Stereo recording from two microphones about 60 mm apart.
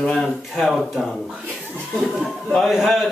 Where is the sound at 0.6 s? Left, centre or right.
Centre.